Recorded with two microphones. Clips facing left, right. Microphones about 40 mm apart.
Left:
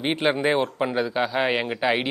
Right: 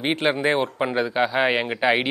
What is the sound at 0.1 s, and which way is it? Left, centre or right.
Speech, centre.